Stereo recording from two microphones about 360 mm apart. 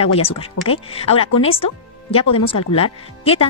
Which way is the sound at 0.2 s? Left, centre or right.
Centre.